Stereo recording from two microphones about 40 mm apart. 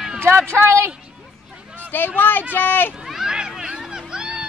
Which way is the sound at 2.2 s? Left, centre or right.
Left.